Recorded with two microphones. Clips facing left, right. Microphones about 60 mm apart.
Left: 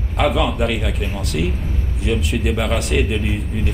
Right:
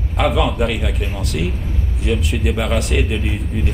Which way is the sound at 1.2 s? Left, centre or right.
Centre.